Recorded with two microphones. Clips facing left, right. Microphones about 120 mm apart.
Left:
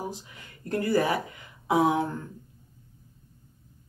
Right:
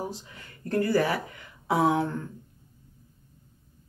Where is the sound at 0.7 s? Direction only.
15° left (ahead or behind).